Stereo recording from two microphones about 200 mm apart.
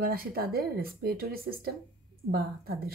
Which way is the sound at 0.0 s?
45° right (ahead or behind).